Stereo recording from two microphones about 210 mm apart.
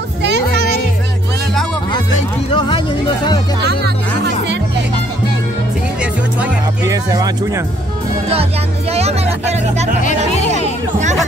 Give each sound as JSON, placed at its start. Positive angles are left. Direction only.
{"t": 0.2, "sound": "children playing", "side_deg": -55}
{"t": 2.5, "sound": "speech", "side_deg": 25}
{"t": 6.9, "sound": "speech", "side_deg": -15}
{"t": 8.9, "sound": "speech", "side_deg": -30}